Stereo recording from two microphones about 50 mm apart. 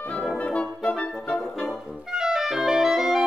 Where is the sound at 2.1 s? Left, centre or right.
Centre.